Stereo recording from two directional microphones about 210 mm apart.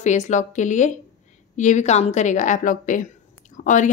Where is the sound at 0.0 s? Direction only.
35° left (ahead or behind).